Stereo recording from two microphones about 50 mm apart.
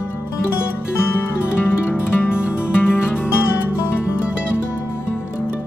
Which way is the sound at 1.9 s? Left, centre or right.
Left.